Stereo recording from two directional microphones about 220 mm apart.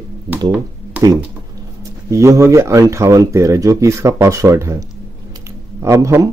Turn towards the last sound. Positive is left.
turn(degrees=-15)  # may be behind; listen again after turning